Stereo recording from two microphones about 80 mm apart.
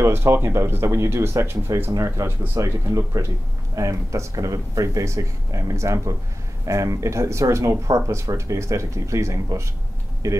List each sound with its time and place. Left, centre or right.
0.0 s speech: right